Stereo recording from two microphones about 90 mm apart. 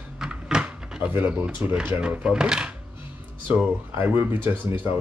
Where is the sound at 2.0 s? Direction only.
10° right (ahead or behind).